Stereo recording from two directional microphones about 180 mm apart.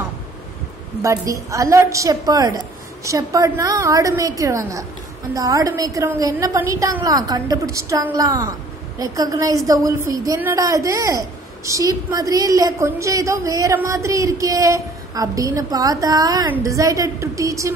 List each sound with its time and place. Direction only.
1.0 s a woman's voice: 15° right (ahead or behind)